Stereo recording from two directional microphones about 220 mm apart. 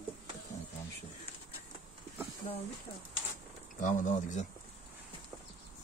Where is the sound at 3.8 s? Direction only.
35° left (ahead or behind).